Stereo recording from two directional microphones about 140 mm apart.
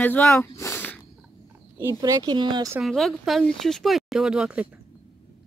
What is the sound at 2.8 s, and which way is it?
Speech, centre (ahead or behind).